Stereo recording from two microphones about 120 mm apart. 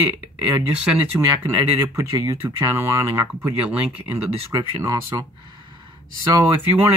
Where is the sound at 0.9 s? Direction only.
20° right (ahead or behind).